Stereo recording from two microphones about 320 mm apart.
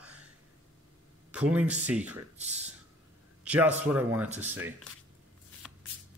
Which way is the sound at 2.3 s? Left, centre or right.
Right.